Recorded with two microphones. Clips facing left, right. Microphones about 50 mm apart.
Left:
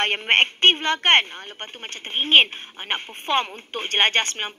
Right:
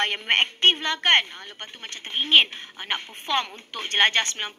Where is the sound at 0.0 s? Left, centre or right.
Left.